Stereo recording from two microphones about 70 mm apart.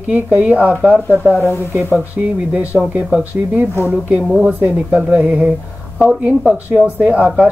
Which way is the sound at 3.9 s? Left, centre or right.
Centre.